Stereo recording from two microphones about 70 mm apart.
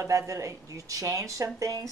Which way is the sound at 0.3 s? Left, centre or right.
Right.